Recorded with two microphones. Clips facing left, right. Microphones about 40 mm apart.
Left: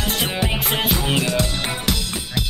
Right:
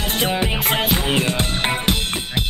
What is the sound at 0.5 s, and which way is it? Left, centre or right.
Music, centre.